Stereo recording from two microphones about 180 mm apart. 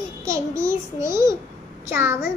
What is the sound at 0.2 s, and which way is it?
Child singing, 15° right (ahead or behind).